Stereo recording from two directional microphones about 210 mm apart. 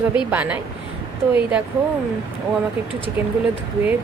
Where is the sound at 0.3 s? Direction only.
5° right (ahead or behind).